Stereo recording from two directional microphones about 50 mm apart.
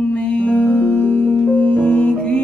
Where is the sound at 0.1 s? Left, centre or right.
Left.